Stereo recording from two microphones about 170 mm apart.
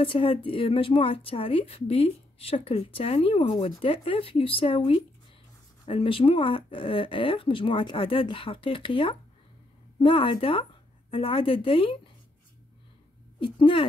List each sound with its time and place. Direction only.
0.0 s a woman's voice: 30° left (ahead or behind)
13.4 s a woman's voice: 30° left (ahead or behind)